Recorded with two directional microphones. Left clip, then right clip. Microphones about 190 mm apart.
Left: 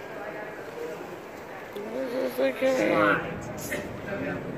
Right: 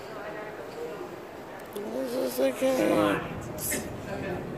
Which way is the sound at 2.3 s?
10° right (ahead or behind).